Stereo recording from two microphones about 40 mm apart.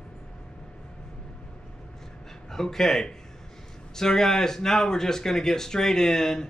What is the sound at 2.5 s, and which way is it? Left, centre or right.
Speech, centre.